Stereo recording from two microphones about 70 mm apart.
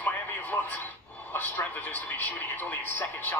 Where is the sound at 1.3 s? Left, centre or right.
Left.